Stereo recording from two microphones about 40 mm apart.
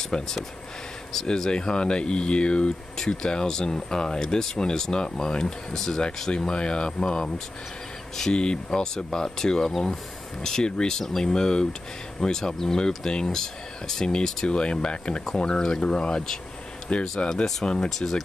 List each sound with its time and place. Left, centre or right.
0.0 s speech: centre
16.9 s speech: left
17.8 s speech: centre